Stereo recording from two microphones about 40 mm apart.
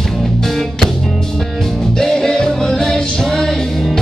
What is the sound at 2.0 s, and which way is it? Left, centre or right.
Music, centre.